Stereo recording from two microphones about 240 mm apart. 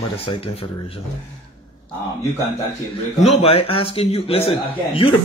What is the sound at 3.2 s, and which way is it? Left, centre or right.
Speech, left.